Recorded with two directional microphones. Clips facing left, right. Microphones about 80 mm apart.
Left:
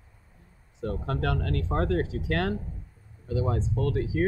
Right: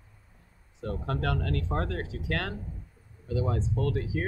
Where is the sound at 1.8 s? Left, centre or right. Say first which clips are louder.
Left 7 dB; left.